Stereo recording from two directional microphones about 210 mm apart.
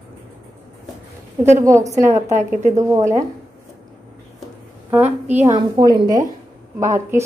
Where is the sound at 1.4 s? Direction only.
15° right (ahead or behind).